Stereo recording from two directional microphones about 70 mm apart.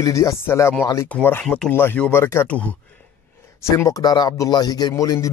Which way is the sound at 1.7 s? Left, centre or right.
Left.